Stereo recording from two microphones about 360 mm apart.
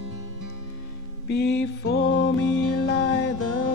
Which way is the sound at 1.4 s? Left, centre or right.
Left.